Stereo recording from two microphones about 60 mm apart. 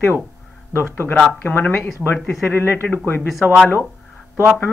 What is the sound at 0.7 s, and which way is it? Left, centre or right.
Speech, left.